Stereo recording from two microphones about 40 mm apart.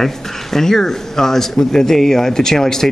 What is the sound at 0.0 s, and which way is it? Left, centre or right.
Speech, centre.